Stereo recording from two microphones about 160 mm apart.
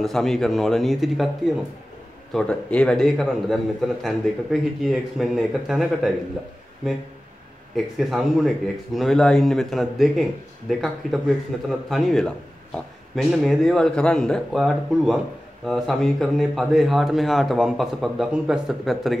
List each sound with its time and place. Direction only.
0.0 s a man's voice: centre (ahead or behind)
7.7 s a man's voice: centre (ahead or behind)